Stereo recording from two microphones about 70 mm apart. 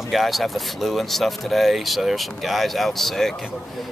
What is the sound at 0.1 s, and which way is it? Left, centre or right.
Speech, centre.